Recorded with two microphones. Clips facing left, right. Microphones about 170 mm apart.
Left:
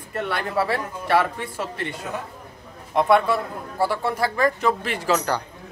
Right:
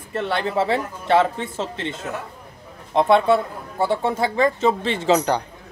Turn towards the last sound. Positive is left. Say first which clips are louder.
# right 4 dB
turn(degrees=-20)  # may be behind; listen again after turning